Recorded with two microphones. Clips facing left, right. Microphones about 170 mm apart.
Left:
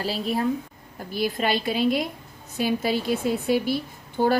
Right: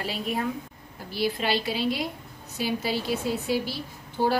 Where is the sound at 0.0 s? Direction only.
35° left (ahead or behind).